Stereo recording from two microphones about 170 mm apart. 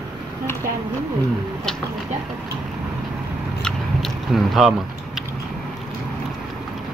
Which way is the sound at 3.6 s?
Centre (ahead or behind).